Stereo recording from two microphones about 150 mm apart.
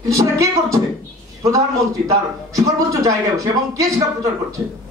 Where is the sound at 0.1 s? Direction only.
20° right (ahead or behind).